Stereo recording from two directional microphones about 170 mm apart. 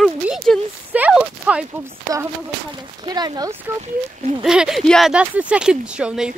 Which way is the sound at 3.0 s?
25° right (ahead or behind).